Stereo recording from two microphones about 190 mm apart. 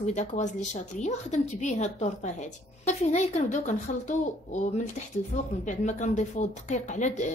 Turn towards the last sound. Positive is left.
turn(degrees=40)  # may be behind; listen again after turning